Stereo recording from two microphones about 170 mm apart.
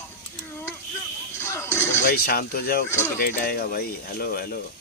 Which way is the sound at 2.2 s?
65° left (ahead or behind).